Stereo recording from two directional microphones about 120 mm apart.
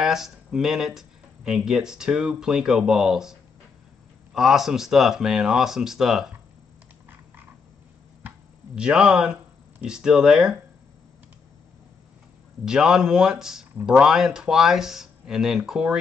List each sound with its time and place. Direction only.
0.0 s speech: 5° right (ahead or behind)
8.7 s speech: 5° right (ahead or behind)
12.6 s speech: 5° right (ahead or behind)